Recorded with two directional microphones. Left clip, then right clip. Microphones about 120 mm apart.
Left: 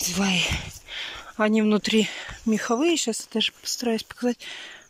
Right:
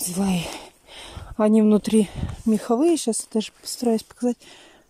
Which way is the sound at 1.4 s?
40° right (ahead or behind).